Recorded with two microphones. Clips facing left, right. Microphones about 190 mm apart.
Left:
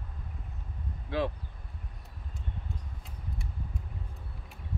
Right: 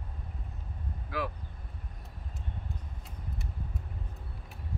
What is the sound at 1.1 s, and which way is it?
Speech, 30° left (ahead or behind).